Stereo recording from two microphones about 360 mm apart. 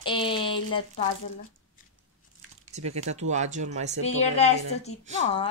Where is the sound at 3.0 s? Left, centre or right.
Centre.